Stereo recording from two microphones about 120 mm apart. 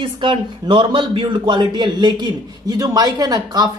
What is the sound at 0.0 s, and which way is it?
Speech, 45° right (ahead or behind).